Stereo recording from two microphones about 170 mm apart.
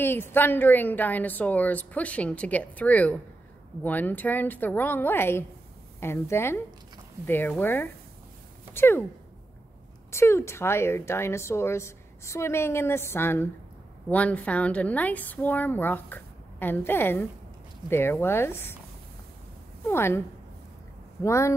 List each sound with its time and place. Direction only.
0.0 s a woman's voice: 10° left (ahead or behind)
10.1 s a woman's voice: 15° left (ahead or behind)
19.9 s a woman's voice: 15° left (ahead or behind)
21.2 s a woman's voice: 15° left (ahead or behind)